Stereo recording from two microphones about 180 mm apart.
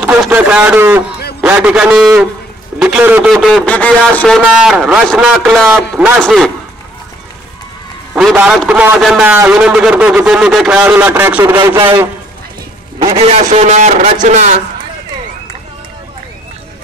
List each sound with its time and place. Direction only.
0.0 s a man's voice: 5° right (ahead or behind)
3.6 s a man's voice: 10° left (ahead or behind)
8.1 s a man's voice: 5° right (ahead or behind)
13.0 s a man's voice: 30° right (ahead or behind)